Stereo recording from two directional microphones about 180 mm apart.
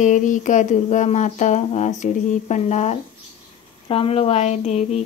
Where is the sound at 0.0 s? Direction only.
45° left (ahead or behind).